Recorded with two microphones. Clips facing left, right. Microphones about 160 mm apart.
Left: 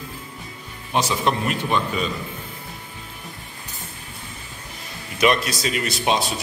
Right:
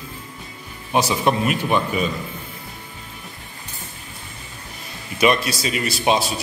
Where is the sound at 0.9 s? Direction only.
10° right (ahead or behind).